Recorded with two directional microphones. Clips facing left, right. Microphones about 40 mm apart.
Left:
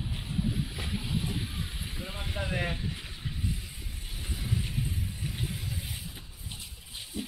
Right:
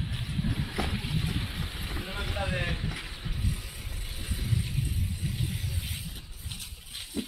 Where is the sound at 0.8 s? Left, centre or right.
Right.